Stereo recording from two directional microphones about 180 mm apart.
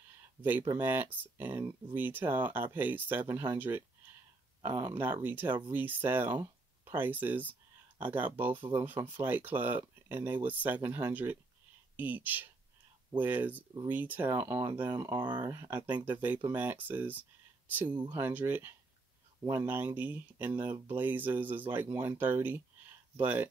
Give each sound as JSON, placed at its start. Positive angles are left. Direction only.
{"t": 0.4, "sound": "speech", "side_deg": -10}
{"t": 15.0, "sound": "speech", "side_deg": -25}